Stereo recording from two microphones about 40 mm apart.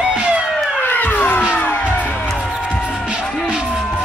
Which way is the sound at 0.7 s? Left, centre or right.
Left.